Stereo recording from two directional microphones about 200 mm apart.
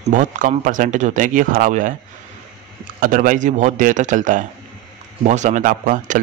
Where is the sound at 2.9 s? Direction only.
40° right (ahead or behind).